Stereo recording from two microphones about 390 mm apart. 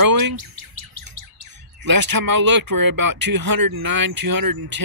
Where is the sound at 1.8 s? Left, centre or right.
Right.